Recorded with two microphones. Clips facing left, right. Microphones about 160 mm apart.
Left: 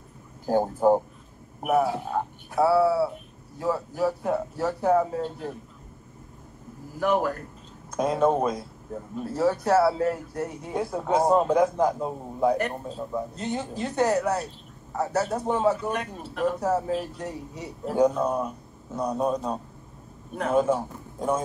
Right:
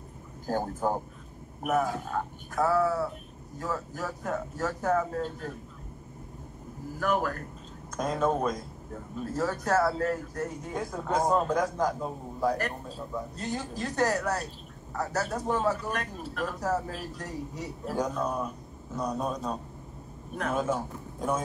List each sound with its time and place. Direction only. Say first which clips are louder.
0.5 s speech: left 8 dB; 15° left (ahead or behind)
7.0 s a man's voice: left 4 dB; 15° left (ahead or behind)